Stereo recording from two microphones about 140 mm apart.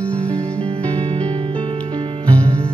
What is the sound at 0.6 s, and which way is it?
Music, 45° right (ahead or behind).